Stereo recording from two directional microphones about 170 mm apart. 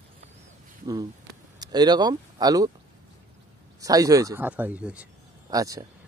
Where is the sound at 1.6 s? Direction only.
25° right (ahead or behind).